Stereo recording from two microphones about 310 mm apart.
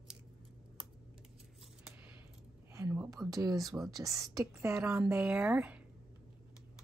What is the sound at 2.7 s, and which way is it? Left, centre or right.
A woman's voice, centre.